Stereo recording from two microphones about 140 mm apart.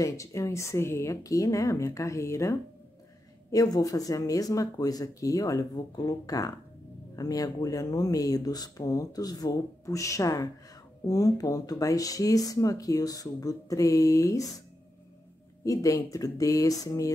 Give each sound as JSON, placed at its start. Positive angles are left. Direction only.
{"t": 0.0, "sound": "speech", "side_deg": 20}
{"t": 3.5, "sound": "speech", "side_deg": 25}
{"t": 15.6, "sound": "speech", "side_deg": 25}